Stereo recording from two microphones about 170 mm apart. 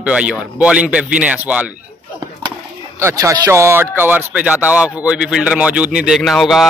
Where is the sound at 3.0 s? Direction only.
15° right (ahead or behind).